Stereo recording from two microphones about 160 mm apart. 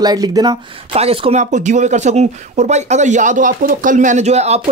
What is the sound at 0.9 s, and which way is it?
Speech, 35° right (ahead or behind).